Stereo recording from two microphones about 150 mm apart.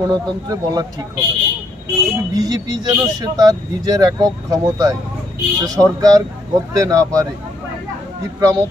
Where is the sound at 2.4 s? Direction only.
25° right (ahead or behind).